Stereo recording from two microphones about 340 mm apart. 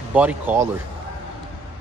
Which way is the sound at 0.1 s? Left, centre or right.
Centre.